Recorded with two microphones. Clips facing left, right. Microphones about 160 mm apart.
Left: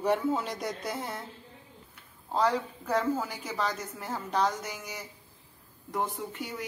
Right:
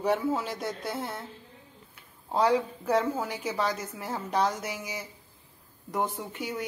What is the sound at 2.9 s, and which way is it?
A woman's voice, centre (ahead or behind).